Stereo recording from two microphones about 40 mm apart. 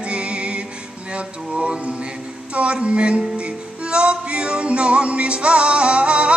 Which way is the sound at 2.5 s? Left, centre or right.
Right.